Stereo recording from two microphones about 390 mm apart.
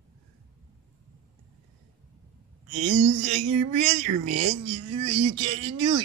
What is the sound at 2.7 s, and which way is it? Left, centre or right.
Speech, centre.